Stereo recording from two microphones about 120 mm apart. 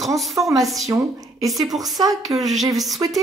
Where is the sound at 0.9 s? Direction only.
30° right (ahead or behind).